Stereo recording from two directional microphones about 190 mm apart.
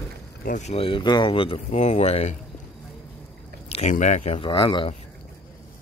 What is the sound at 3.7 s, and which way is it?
Speech, 40° left (ahead or behind).